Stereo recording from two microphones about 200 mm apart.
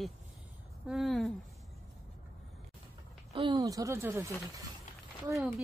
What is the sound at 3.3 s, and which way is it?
Speech, 25° right (ahead or behind).